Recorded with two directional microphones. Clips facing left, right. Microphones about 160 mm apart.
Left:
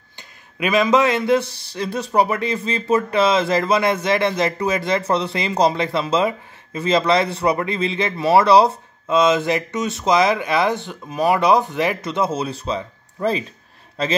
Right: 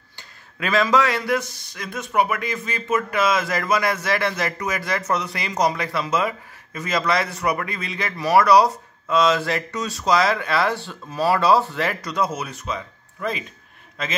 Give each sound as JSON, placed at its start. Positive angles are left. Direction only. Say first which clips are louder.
{"t": 0.6, "sound": "a man's voice", "louder": "left 3 dB", "side_deg": 15}